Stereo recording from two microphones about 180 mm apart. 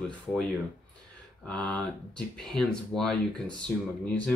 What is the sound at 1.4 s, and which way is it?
Speech, 5° left (ahead or behind).